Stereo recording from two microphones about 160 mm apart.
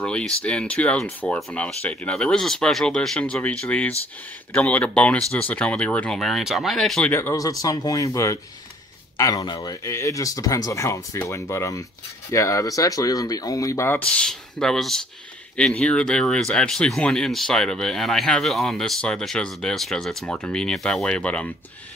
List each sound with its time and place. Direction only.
0.0 s speech: 5° left (ahead or behind)